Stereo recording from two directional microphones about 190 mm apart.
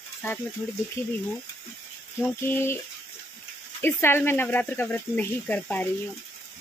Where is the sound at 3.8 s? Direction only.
10° left (ahead or behind).